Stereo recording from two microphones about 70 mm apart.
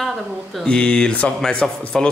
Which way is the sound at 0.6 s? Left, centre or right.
Centre.